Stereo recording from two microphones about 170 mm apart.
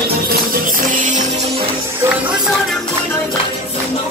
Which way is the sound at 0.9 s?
45° right (ahead or behind).